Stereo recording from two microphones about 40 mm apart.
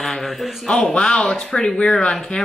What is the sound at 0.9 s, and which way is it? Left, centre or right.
Speech, centre.